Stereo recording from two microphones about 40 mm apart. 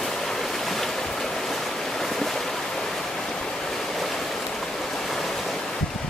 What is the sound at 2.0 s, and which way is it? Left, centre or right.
Boat, centre.